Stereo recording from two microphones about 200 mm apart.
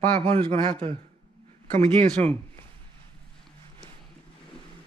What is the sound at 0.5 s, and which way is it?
Speech, 25° right (ahead or behind).